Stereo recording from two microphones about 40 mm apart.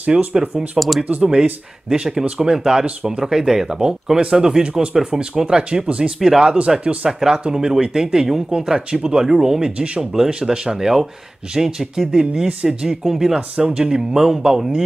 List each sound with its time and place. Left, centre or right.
0.0 s speech: right
0.7 s speech: centre
1.0 s speech: right
1.9 s speech: centre
6.1 s speech: centre
6.8 s speech: right
7.1 s speech: centre
12.1 s speech: right
13.6 s speech: right
13.8 s speech: centre